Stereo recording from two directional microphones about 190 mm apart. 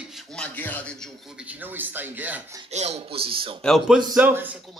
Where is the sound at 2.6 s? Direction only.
35° right (ahead or behind).